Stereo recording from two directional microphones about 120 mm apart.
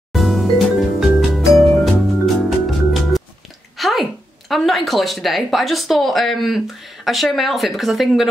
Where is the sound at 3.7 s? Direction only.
Centre (ahead or behind).